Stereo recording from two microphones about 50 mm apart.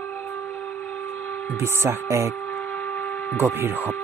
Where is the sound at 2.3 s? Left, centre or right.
Left.